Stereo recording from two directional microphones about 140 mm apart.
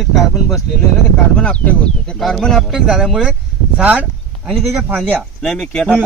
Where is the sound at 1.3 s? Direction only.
10° left (ahead or behind); by 4.5 s 10° right (ahead or behind).